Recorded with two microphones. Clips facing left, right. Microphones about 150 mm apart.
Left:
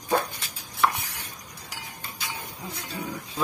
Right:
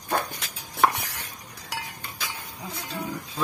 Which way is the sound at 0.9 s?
75° right (ahead or behind).